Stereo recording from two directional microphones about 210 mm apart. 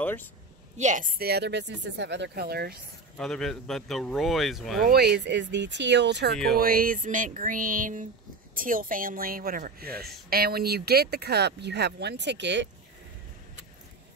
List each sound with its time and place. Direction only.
0.0 s speech: 10° left (ahead or behind)
0.7 s speech: 35° right (ahead or behind)
3.2 s speech: centre (ahead or behind)
4.8 s speech: 50° right (ahead or behind)
6.6 s a sound: 45° right (ahead or behind)
10.3 s speech: 45° right (ahead or behind)